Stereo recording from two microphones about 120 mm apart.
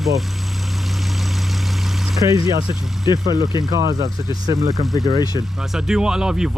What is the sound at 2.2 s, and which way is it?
Speech, 30° right (ahead or behind).